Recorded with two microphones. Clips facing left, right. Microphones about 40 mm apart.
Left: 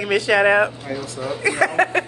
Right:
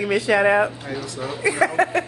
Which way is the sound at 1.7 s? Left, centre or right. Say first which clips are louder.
Left 1 dB; left.